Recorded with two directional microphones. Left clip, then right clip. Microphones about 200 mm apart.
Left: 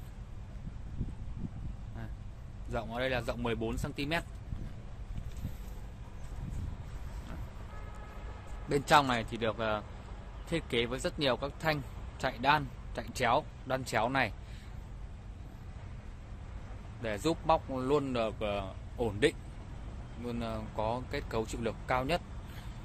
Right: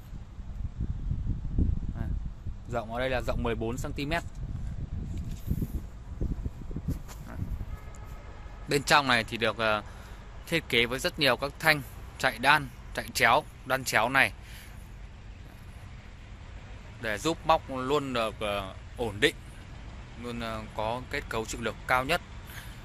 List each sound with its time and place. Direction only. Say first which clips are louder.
2.7 s speech: right 4 dB; 25° right (ahead or behind)
8.6 s speech: right 3 dB; 15° right (ahead or behind)
17.0 s speech: right 3 dB; 5° left (ahead or behind)